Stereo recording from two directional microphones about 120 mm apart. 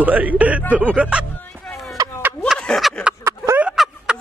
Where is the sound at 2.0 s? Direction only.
30° right (ahead or behind).